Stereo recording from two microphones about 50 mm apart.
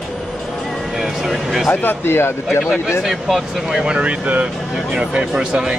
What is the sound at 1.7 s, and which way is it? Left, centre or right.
Speech, left.